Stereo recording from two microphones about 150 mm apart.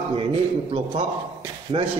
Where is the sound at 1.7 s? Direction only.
40° right (ahead or behind).